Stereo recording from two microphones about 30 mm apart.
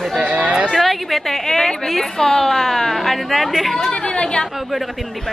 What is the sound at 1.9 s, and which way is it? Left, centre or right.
A woman's voice, centre.